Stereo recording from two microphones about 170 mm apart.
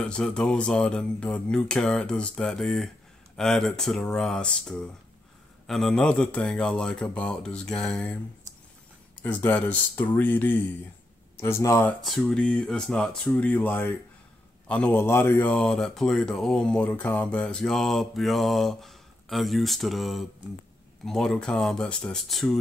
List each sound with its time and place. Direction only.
0.0 s speech: 5° left (ahead or behind)
9.2 s speech: 10° left (ahead or behind)
12.0 s speech: centre (ahead or behind)